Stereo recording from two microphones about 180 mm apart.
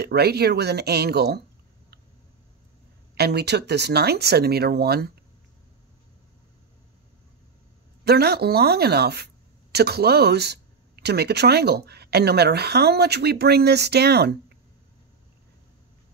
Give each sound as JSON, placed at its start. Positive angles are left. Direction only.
{"t": 0.0, "sound": "a woman's voice", "side_deg": -65}
{"t": 3.2, "sound": "a woman's voice", "side_deg": -65}
{"t": 8.0, "sound": "a woman's voice", "side_deg": -60}